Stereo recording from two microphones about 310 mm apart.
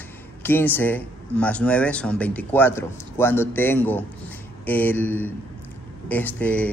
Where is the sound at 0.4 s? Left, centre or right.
Centre.